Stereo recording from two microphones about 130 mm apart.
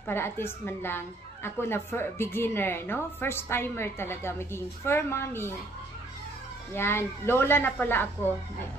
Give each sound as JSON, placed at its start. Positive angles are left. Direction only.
{"t": 0.0, "sound": "a woman's voice", "side_deg": 20}
{"t": 6.7, "sound": "speech", "side_deg": 20}